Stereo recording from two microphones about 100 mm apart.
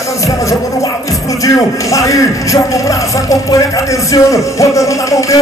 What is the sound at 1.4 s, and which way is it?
Music, 35° left (ahead or behind).